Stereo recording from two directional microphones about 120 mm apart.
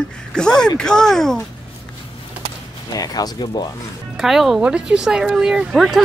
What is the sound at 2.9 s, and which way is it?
Speech, 30° left (ahead or behind).